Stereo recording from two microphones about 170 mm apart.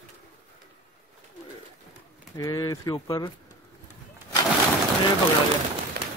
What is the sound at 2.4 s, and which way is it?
Speech, 20° left (ahead or behind).